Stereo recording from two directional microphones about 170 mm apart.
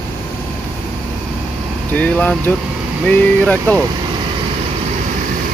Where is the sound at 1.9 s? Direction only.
10° left (ahead or behind).